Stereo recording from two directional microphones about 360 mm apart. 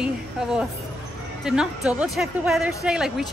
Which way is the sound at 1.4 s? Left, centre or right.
Centre.